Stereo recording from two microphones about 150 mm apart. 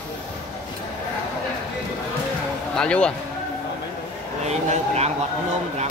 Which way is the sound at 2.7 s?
5° left (ahead or behind).